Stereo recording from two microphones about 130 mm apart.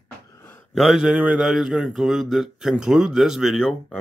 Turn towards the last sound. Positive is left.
turn(degrees=0)  # may be behind; listen again after turning